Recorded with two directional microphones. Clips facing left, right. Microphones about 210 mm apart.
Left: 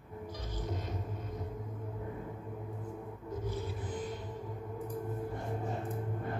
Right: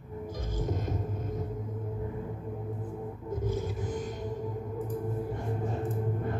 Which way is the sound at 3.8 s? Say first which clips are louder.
Right 4 dB; 45° right (ahead or behind).